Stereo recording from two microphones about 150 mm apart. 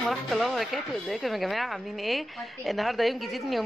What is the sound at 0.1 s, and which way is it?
A woman's voice, centre (ahead or behind).